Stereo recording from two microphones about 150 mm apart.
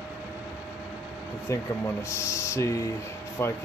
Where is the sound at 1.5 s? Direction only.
20° left (ahead or behind).